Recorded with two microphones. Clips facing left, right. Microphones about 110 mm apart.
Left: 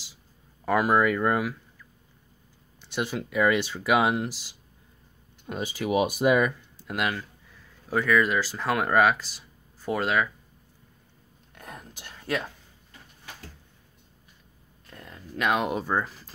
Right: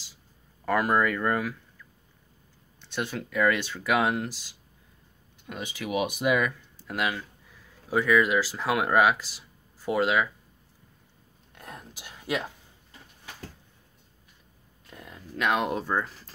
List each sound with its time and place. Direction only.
0.7 s speech: 10° left (ahead or behind)
2.8 s speech: 10° left (ahead or behind)
5.8 s speech: 35° left (ahead or behind)
6.8 s speech: centre (ahead or behind)
11.5 s whispering: centre (ahead or behind)
14.9 s speech: 5° right (ahead or behind)